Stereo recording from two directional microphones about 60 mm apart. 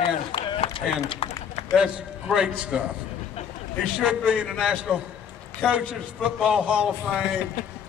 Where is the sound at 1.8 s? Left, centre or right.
Centre.